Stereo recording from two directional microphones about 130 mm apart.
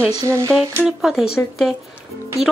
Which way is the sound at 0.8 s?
5° right (ahead or behind).